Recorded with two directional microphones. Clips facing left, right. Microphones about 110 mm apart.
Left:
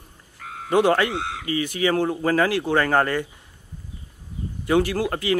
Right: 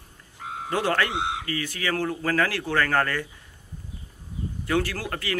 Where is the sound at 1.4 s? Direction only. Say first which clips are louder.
Left 7 dB; 20° left (ahead or behind).